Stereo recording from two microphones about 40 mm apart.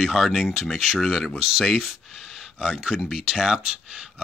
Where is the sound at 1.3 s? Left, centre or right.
Centre.